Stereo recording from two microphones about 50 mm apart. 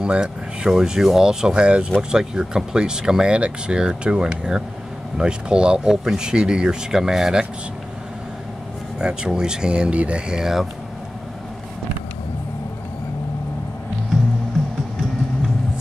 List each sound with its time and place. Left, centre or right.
0.0 s speech: centre
8.9 s speech: centre